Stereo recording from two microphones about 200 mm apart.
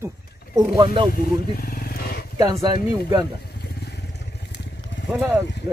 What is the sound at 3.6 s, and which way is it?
Vehicle, 55° left (ahead or behind).